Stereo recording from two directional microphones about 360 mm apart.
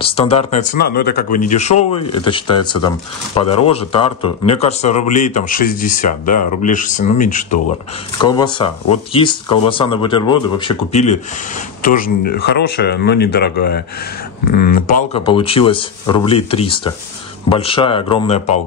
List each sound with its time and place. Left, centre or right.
0.0 s speech: centre
8.2 s speech: centre